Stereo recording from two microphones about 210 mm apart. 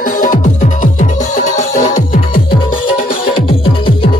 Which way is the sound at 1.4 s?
35° left (ahead or behind).